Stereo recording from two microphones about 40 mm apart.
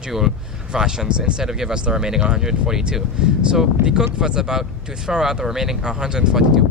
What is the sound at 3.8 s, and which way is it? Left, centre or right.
Speech, right.